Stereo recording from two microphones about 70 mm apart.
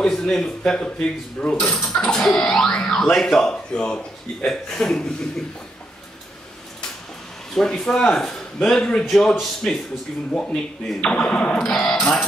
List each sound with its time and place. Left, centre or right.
0.0 s speech: centre
7.5 s speech: centre